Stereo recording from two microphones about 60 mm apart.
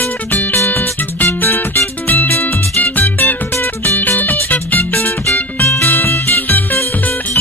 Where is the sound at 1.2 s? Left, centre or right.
Left.